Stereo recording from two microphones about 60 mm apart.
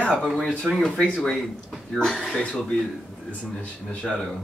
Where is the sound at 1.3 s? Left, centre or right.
Centre.